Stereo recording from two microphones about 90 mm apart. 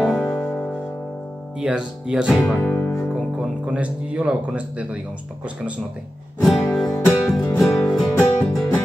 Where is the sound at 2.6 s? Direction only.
20° left (ahead or behind).